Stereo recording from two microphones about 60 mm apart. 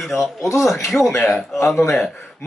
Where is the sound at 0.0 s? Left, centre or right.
Centre.